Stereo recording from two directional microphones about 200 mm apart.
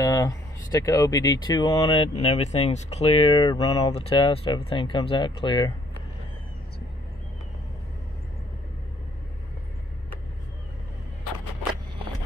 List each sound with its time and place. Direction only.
0.0 s speech: 15° left (ahead or behind)